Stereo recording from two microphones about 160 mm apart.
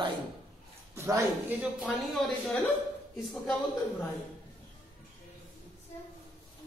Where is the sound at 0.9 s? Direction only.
20° right (ahead or behind).